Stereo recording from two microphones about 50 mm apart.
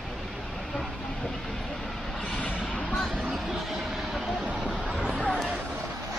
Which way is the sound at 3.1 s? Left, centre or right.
Centre.